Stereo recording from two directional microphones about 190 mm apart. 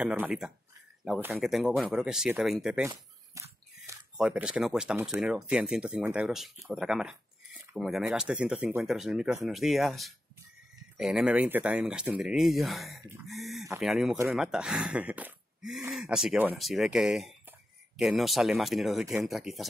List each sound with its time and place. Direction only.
0.0 s speech: 5° right (ahead or behind)
3.4 s biting: 15° right (ahead or behind)
3.8 s speech: 10° right (ahead or behind)